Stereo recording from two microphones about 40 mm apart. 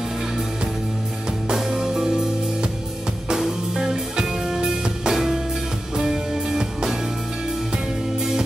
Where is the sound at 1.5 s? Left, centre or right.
Centre.